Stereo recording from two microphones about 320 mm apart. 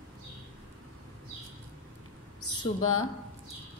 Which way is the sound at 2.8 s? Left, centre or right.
Left.